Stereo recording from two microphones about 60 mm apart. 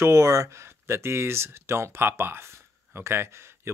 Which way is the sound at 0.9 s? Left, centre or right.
Right.